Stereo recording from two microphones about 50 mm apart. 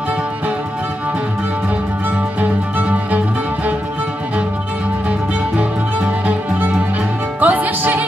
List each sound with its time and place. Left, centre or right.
7.3 s music: right